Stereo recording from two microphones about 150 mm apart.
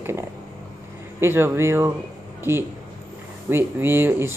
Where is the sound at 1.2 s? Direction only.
15° right (ahead or behind).